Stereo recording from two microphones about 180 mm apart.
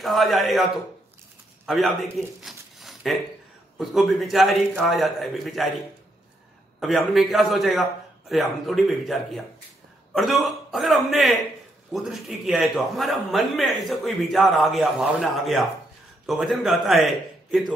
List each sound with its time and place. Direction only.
0.0 s a man's voice: centre (ahead or behind)
6.8 s a man's voice: centre (ahead or behind)